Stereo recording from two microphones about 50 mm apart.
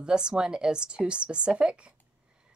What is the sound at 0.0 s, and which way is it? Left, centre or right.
Speech, centre.